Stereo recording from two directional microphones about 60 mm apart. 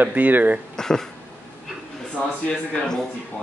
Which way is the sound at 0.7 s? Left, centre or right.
Centre.